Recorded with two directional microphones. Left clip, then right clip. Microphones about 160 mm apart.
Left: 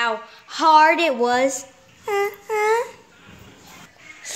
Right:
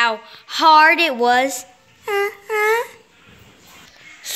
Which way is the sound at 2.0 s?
5° right (ahead or behind).